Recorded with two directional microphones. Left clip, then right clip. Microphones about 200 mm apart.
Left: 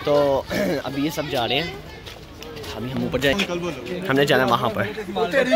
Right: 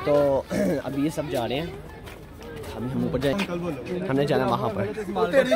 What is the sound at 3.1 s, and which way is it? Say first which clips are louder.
Speech: left 6 dB; 5° right (ahead or behind).